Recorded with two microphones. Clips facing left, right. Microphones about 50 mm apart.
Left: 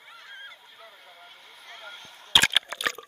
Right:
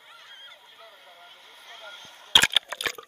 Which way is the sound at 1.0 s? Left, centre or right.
Left.